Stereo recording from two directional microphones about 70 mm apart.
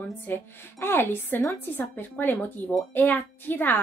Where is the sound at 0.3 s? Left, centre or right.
Left.